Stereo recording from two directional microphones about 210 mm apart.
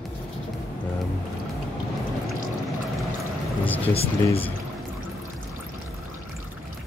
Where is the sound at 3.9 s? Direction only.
30° left (ahead or behind).